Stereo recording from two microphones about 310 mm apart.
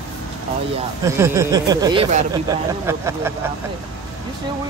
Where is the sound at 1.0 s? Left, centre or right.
Centre.